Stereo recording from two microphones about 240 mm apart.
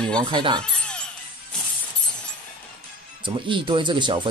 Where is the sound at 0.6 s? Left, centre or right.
Centre.